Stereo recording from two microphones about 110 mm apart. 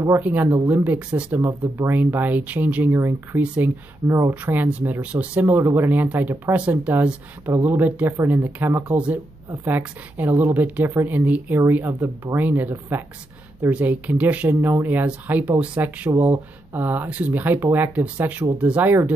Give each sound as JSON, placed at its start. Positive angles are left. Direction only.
{"t": 0.2, "sound": "speech", "side_deg": -15}
{"t": 1.8, "sound": "speech", "side_deg": -20}
{"t": 3.4, "sound": "speech", "side_deg": -10}
{"t": 4.1, "sound": "speech", "side_deg": -25}